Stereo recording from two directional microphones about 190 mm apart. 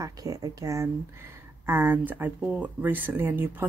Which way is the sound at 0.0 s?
20° right (ahead or behind).